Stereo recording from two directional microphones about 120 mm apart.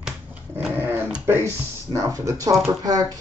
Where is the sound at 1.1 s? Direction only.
15° right (ahead or behind).